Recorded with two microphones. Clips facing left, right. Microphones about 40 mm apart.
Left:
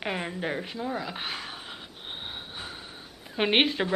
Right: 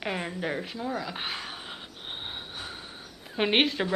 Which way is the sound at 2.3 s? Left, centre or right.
Centre.